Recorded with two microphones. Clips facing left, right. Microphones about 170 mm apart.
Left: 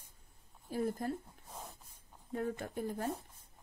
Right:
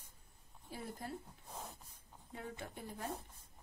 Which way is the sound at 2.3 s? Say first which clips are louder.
Left 10 dB; 50° left (ahead or behind).